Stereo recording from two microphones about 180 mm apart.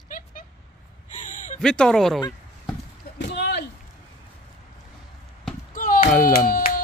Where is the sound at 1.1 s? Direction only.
45° left (ahead or behind).